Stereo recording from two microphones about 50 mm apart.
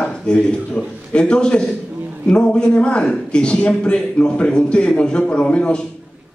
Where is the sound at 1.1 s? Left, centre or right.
Centre.